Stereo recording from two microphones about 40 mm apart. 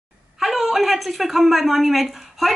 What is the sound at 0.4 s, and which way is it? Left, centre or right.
Speech, centre.